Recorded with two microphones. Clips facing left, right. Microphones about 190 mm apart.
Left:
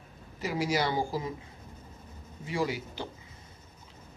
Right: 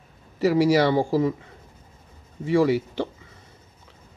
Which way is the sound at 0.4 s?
75° right (ahead or behind).